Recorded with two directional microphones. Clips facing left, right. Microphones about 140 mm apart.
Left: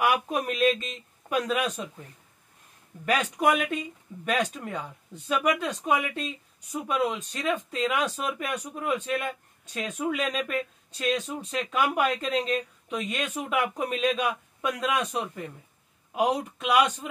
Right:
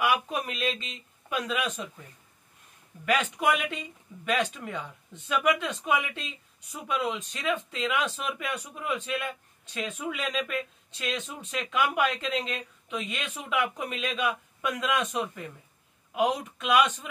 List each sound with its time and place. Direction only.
0.0 s speech: 50° left (ahead or behind)
3.1 s speech: 40° left (ahead or behind)